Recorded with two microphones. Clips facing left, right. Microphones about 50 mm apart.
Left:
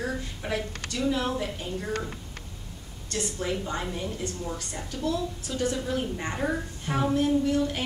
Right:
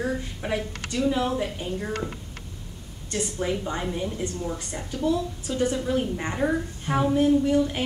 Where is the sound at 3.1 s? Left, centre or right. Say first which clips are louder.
Right 3 dB; centre.